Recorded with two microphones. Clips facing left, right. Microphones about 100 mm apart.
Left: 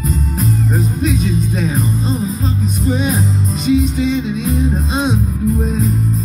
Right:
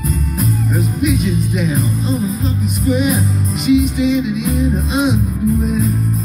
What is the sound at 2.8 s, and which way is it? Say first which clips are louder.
Music: right 2 dB; 30° left (ahead or behind).